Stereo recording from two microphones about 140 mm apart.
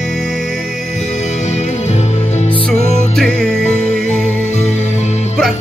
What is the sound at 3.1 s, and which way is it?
Music, 5° left (ahead or behind).